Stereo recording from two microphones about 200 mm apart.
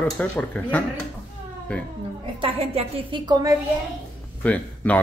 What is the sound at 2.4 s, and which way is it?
A woman's voice, 30° right (ahead or behind).